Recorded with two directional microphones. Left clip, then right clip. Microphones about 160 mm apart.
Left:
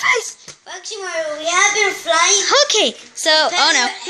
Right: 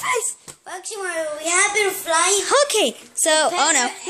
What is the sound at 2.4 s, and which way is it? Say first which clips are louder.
A woman's voice: left 3 dB; 15° right (ahead or behind).